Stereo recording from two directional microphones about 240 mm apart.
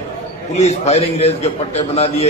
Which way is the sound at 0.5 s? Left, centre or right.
Left.